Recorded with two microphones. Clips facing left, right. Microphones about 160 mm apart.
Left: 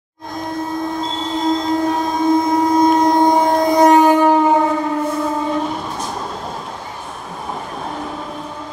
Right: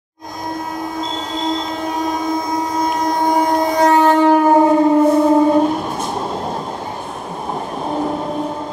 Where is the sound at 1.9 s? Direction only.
30° left (ahead or behind); by 4.3 s 10° left (ahead or behind).